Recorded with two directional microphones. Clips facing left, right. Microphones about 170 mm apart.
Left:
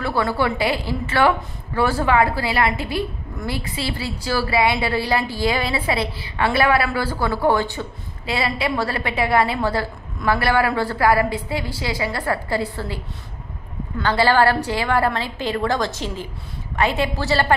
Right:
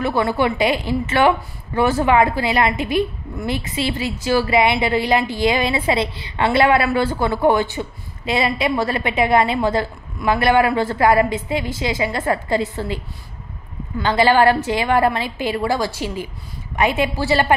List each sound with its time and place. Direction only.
0.0 s a woman's voice: 20° right (ahead or behind)